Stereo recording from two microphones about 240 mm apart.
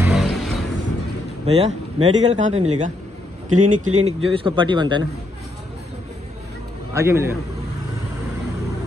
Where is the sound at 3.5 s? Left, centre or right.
Right.